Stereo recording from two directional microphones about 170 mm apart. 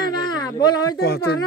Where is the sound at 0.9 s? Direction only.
70° left (ahead or behind).